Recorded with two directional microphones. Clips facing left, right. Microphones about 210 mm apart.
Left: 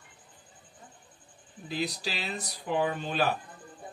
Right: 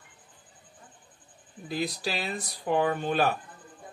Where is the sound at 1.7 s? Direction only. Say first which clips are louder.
Right 2 dB; 50° right (ahead or behind).